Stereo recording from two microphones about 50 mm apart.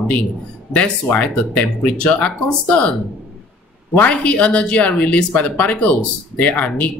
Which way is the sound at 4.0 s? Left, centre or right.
Left.